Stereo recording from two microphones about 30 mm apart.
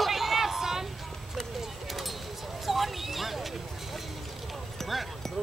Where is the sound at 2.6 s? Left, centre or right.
Centre.